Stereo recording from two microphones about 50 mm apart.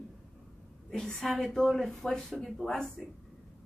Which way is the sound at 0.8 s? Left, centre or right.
Centre.